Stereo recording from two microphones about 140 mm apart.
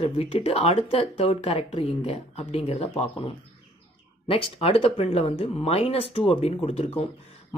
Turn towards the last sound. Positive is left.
turn(degrees=45)  # may be behind; listen again after turning